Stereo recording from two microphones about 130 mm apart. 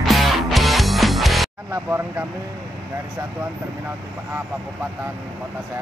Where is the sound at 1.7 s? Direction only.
20° right (ahead or behind).